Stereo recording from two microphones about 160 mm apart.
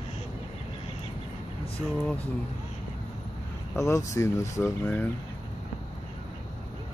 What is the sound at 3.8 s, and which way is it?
Speech, 20° left (ahead or behind).